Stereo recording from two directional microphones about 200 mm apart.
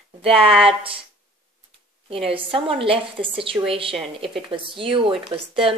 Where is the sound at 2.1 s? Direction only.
25° right (ahead or behind).